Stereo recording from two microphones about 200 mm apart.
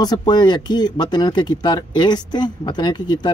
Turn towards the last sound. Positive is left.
turn(degrees=20)  # may be behind; listen again after turning